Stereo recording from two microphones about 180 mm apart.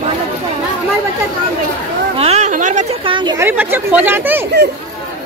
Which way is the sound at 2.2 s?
35° right (ahead or behind).